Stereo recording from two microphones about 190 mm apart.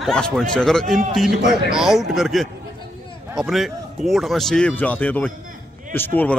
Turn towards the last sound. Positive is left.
turn(degrees=10)  # may be behind; listen again after turning